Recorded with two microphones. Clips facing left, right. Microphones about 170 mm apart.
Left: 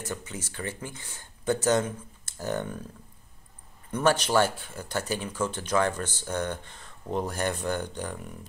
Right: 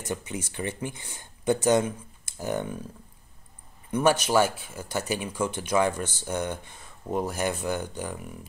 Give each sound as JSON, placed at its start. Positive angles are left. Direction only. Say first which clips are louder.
{"t": 0.0, "sound": "speech", "louder": "right 3 dB", "side_deg": -15}
{"t": 3.9, "sound": "speech", "louder": "right 1 dB", "side_deg": -10}